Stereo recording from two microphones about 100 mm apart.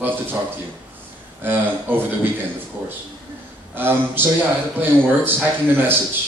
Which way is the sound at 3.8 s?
20° right (ahead or behind).